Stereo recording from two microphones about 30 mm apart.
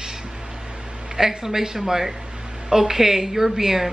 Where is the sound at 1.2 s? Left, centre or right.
Centre.